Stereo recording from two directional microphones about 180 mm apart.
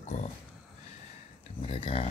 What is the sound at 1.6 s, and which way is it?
Speech, 30° left (ahead or behind).